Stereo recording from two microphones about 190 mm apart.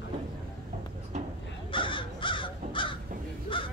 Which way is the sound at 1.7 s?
25° left (ahead or behind).